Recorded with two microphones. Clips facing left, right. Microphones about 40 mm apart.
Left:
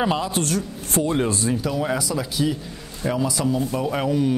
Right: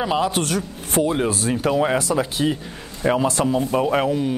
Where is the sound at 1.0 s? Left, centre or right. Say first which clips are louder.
Even; centre.